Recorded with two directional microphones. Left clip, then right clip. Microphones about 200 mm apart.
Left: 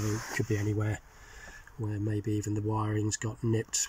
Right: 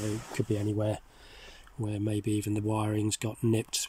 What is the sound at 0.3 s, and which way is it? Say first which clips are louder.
Speech: right 2 dB; 15° right (ahead or behind).